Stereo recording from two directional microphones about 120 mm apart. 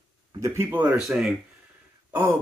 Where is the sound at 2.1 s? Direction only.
20° right (ahead or behind).